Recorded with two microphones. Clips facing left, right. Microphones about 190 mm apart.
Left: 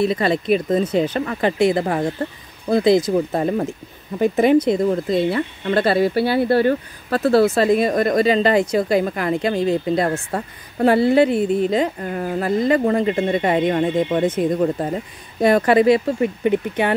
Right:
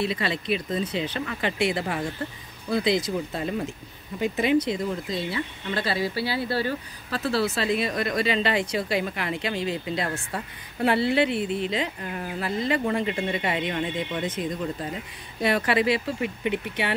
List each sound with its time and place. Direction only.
0.0 s speech: 45° left (ahead or behind)